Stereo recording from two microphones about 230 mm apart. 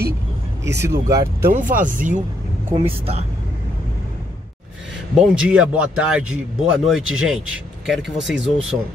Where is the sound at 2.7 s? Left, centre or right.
Right.